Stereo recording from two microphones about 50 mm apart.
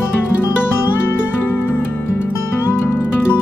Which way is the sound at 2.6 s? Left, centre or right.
Left.